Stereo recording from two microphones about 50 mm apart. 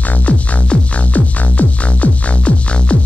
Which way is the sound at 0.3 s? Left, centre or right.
Left.